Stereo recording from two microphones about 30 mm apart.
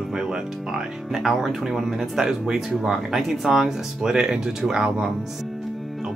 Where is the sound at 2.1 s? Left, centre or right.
Right.